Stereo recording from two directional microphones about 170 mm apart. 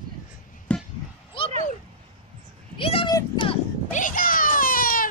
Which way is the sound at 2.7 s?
30° left (ahead or behind).